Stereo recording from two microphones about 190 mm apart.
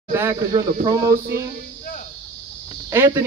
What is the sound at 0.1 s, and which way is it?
Speech, 15° right (ahead or behind).